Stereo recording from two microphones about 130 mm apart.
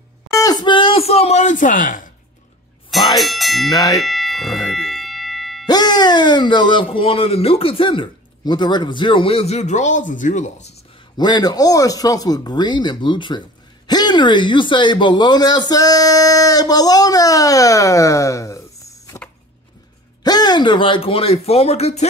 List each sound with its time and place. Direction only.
0.3 s speech: 30° left (ahead or behind); by 2.0 s 90° left
3.2 s speech: centre (ahead or behind)
3.7 s speech: 30° left (ahead or behind)
4.0 s a sound: centre (ahead or behind)
5.7 s speech: 30° left (ahead or behind); by 10.5 s 75° left (ahead or behind)
11.1 s speech: 30° left (ahead or behind)
20.2 s speech: 30° left (ahead or behind); by 22.0 s 55° left (ahead or behind)